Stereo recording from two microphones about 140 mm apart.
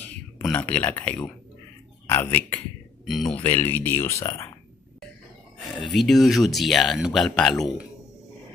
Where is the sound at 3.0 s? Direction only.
Centre (ahead or behind).